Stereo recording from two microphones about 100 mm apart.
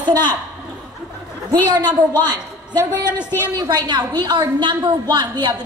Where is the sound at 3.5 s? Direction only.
45° right (ahead or behind).